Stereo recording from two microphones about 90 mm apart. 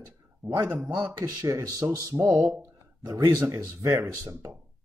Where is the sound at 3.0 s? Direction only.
45° right (ahead or behind).